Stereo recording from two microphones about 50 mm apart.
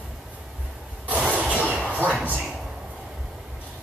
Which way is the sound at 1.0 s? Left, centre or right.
Right.